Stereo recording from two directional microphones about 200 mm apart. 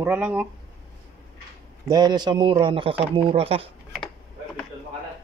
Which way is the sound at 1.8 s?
20° right (ahead or behind).